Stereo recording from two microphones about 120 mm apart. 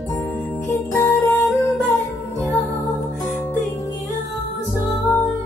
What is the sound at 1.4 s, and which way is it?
Music, 5° left (ahead or behind).